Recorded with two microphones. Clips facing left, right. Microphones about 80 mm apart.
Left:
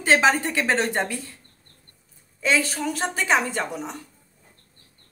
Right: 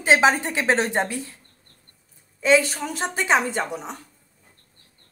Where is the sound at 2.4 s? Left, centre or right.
Centre.